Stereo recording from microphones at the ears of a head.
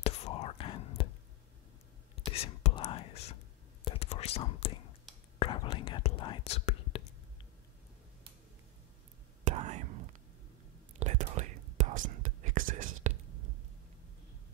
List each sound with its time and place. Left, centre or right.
0.0 s whispering: left
2.1 s whispering: left
9.4 s whispering: right